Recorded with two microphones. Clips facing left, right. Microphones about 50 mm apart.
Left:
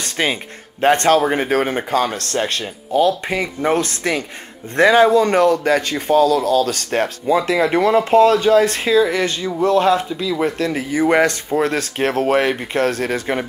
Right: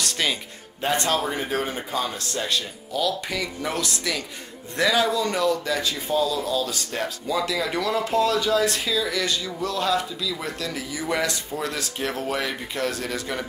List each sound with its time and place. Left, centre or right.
0.0 s music: left
0.7 s speech: left
7.2 s speech: left